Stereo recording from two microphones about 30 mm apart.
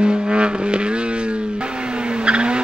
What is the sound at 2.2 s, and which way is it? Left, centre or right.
Vehicle, right.